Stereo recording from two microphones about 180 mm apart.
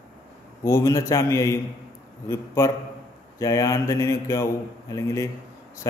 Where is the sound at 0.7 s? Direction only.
15° left (ahead or behind).